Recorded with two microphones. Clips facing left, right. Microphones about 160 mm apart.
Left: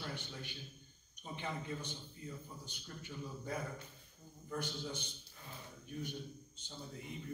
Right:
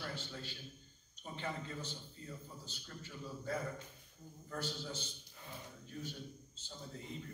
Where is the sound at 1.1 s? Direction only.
15° left (ahead or behind).